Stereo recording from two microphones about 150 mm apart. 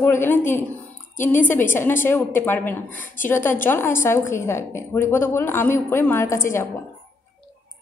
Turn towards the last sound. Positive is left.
turn(degrees=20)  # may be behind; listen again after turning